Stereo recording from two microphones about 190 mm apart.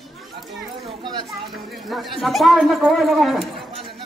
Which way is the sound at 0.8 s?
25° right (ahead or behind).